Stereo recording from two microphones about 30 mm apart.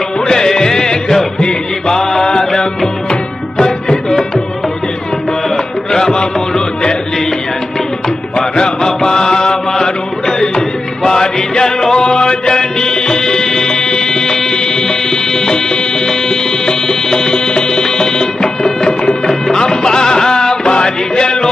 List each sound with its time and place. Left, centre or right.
0.3 s music: left
5.9 s music: centre
6.1 s music: left
8.4 s mantra: left
11.1 s music: left